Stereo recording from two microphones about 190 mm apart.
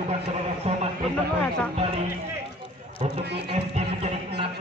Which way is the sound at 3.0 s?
35° right (ahead or behind).